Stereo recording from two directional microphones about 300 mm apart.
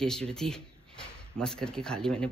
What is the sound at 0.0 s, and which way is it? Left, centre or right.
Speech, centre.